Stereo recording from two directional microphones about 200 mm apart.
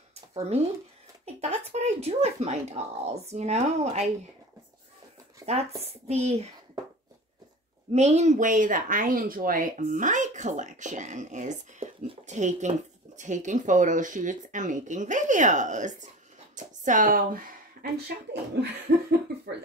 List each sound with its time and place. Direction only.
0.1 s a sound: 30° right (ahead or behind)
1.2 s speech: 35° right (ahead or behind)
5.4 s speech: 30° right (ahead or behind)
7.9 s speech: 35° right (ahead or behind)
18.0 s speech: 55° right (ahead or behind)